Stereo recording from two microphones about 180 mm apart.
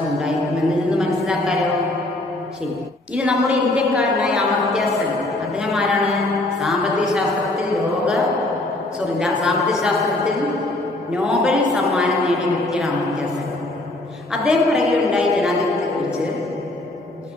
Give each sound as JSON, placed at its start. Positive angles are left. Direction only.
{"t": 0.2, "sound": "a sound", "side_deg": -5}
{"t": 3.2, "sound": "a woman's voice", "side_deg": -5}
{"t": 7.7, "sound": "a woman's voice", "side_deg": 0}
{"t": 11.2, "sound": "a woman's voice", "side_deg": 0}
{"t": 14.3, "sound": "a woman's voice", "side_deg": 0}